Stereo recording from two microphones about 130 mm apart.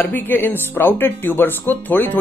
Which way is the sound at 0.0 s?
15° left (ahead or behind).